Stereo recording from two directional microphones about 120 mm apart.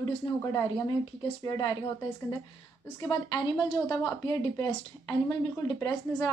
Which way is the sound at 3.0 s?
35° left (ahead or behind).